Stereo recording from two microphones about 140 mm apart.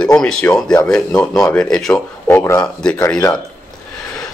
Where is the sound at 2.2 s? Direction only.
15° left (ahead or behind).